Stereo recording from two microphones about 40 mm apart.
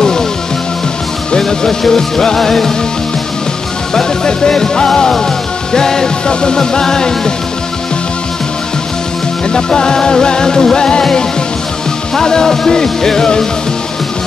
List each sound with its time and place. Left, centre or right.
1.4 s music: centre
3.9 s music: centre
9.5 s music: centre